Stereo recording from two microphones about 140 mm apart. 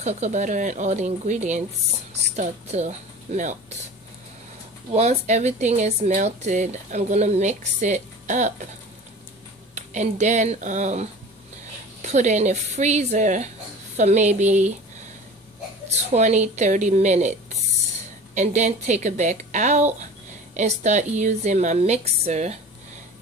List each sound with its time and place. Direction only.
0.0 s speech: 55° right (ahead or behind)
4.9 s speech: 55° right (ahead or behind)
9.8 s speech: 60° right (ahead or behind)
15.9 s speech: 55° right (ahead or behind)